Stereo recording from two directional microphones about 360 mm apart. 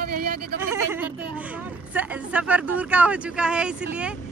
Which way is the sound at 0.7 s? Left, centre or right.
Centre.